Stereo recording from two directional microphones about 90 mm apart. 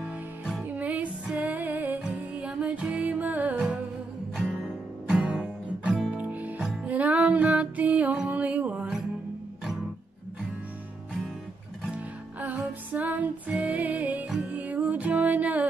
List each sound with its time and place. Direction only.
0.7 s music: 20° right (ahead or behind)
6.6 s music: 5° right (ahead or behind)
6.9 s music: 15° right (ahead or behind)
12.4 s music: 20° right (ahead or behind)